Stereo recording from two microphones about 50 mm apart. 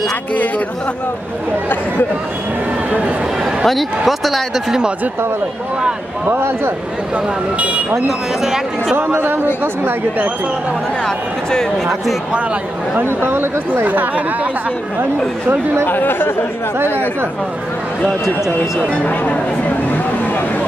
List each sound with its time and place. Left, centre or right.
3.6 s speech: centre
6.2 s speech: right
7.5 s speech: right
9.0 s speech: right
13.0 s speech: right
15.8 s speech: left